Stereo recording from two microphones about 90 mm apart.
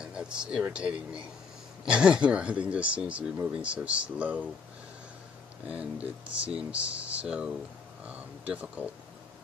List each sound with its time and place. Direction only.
0.0 s speech: 10° right (ahead or behind)
5.7 s speech: 15° right (ahead or behind)